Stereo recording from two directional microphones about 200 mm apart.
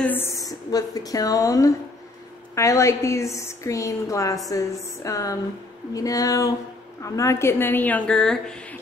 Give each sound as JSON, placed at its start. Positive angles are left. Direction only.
{"t": 0.0, "sound": "a woman's voice", "side_deg": 10}